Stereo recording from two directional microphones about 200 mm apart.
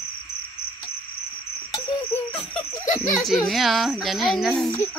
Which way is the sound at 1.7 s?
10° left (ahead or behind).